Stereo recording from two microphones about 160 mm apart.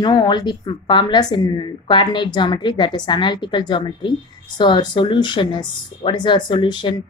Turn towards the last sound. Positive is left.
turn(degrees=30)  # may be behind; listen again after turning